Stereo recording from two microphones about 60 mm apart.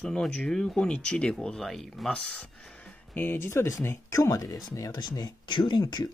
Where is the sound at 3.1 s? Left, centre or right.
Left.